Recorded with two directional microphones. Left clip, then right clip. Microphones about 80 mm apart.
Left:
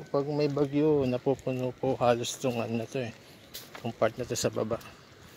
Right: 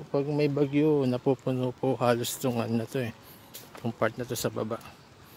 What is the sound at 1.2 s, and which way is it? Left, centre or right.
Speech, right.